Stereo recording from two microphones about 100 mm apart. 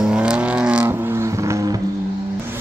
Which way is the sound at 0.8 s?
30° right (ahead or behind).